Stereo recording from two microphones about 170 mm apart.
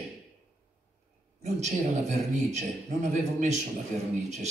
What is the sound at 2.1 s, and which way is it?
A man's voice, 45° right (ahead or behind).